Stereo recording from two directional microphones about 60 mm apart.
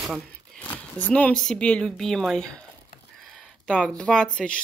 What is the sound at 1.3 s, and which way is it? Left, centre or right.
Speech, centre.